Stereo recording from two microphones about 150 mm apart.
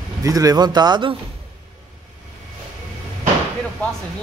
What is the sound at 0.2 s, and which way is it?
Speech, 25° right (ahead or behind).